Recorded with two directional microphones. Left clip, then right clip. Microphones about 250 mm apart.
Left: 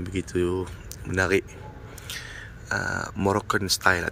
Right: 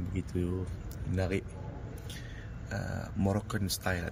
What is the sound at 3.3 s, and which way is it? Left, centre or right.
Speech, centre.